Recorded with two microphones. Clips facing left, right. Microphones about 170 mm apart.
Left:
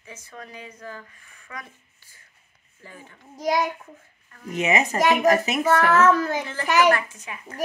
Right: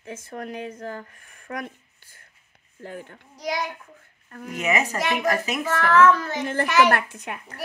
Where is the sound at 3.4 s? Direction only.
45° left (ahead or behind).